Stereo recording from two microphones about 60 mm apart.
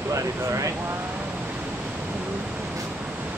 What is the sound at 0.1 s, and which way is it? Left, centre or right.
Speech, right.